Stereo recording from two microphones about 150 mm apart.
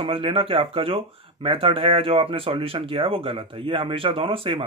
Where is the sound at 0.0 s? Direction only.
40° right (ahead or behind).